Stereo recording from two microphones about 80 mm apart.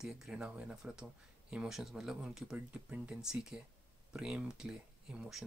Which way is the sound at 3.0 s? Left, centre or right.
Centre.